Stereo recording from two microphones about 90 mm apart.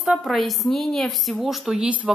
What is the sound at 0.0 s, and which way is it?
A woman's voice, centre (ahead or behind).